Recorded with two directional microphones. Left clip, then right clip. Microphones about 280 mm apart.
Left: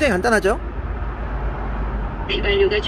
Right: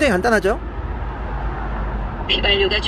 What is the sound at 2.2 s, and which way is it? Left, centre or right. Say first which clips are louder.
Speech: right 1 dB; right.